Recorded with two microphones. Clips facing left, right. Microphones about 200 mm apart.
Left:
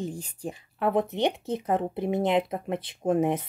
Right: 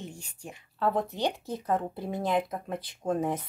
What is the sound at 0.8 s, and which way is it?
Speech, 20° left (ahead or behind).